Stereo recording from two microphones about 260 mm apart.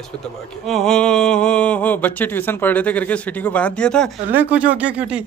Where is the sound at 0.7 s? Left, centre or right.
Centre.